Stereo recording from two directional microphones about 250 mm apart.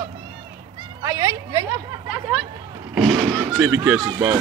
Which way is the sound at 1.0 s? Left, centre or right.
Centre.